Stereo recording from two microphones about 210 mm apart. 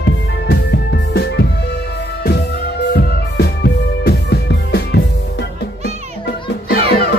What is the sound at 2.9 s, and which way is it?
Music, 50° left (ahead or behind).